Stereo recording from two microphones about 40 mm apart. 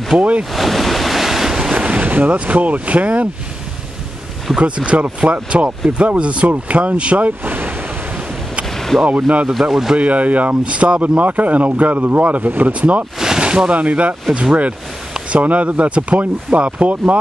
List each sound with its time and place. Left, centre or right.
0.1 s speech: right
0.5 s waves: centre
1.7 s boat: right
2.0 s speech: right
4.6 s speech: right
7.4 s ocean: right
8.6 s vehicle: centre
9.5 s speech: centre
9.9 s speech: right
10.6 s speech: right
13.2 s a sound: centre
13.7 s speech: right
14.3 s speech: right
15.3 s speech: right